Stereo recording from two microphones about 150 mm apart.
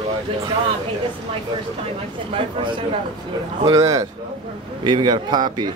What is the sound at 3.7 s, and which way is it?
Speech, 20° right (ahead or behind).